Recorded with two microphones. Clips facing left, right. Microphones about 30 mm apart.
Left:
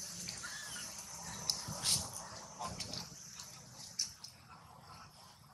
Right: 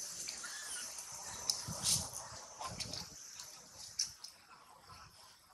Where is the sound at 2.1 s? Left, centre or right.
Centre.